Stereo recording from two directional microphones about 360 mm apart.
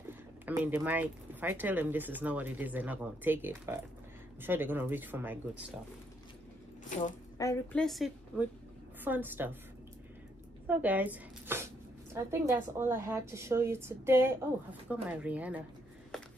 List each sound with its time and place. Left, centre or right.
0.5 s speech: centre
6.8 s speech: left
7.3 s speech: centre
10.7 s speech: centre